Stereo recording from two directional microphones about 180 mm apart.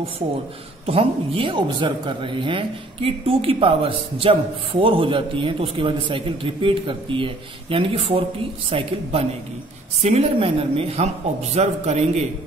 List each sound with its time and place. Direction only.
0.8 s a woman's voice: 30° right (ahead or behind)